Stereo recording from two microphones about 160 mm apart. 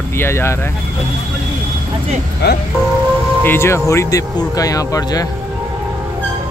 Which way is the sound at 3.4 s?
15° left (ahead or behind).